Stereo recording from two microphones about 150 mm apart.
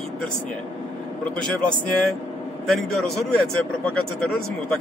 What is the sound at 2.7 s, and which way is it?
A man's voice, centre (ahead or behind).